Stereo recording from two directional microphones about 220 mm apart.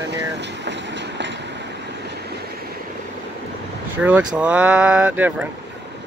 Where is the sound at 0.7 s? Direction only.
55° right (ahead or behind).